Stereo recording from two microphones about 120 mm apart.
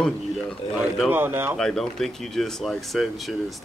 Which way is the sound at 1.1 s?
15° right (ahead or behind).